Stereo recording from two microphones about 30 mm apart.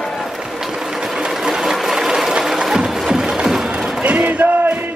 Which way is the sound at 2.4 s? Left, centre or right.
Centre.